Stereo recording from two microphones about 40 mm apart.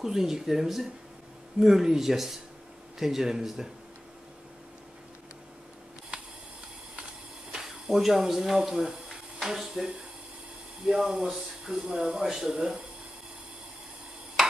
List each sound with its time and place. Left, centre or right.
0.0 s speech: centre
7.5 s speech: centre